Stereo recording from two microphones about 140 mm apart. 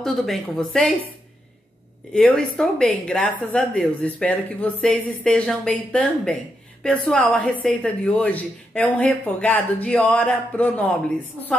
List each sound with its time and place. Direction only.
0.0 s speech: 5° left (ahead or behind)
2.1 s a woman's voice: 10° left (ahead or behind)